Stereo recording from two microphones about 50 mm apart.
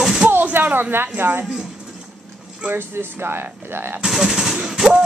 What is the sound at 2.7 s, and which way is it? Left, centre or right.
Speech, right.